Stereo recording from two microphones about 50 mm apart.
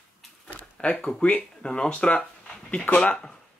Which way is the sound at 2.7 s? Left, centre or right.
Left.